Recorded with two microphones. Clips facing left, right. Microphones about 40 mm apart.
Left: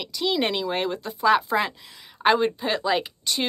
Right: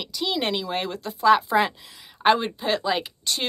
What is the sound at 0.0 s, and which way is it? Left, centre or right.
Speech, centre.